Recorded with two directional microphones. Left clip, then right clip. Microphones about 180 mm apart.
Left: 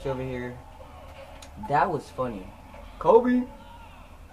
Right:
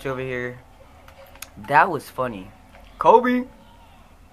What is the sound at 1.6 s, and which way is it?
Speech, 20° right (ahead or behind).